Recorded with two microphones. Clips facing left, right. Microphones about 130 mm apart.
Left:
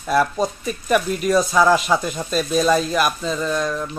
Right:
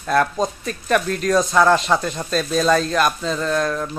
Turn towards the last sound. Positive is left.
turn(degrees=0)  # may be behind; listen again after turning